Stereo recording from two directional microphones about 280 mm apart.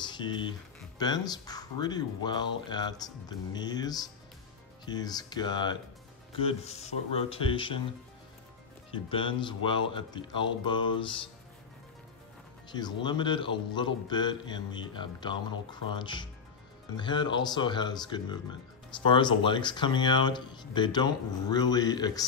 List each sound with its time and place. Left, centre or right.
0.0 s speech: centre
8.9 s speech: centre
12.7 s speech: centre